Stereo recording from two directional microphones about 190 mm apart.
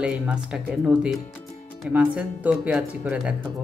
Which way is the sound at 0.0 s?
5° right (ahead or behind).